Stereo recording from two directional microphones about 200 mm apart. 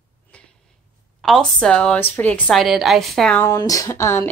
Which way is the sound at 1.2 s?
Centre (ahead or behind).